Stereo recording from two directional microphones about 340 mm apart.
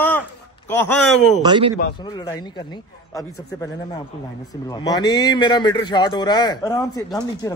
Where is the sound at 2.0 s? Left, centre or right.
Centre.